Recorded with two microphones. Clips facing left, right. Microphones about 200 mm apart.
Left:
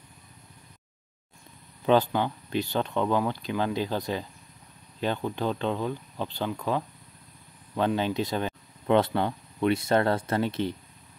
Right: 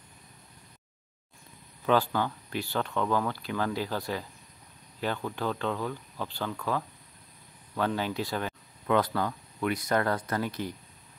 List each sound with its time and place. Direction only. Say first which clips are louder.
1.9 s speech: left 3 dB; 20° left (ahead or behind)